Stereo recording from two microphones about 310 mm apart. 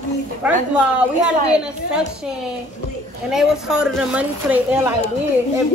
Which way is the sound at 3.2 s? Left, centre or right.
Centre.